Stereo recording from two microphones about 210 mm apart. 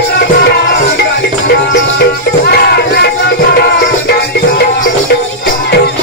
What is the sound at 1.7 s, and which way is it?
Music, 50° left (ahead or behind).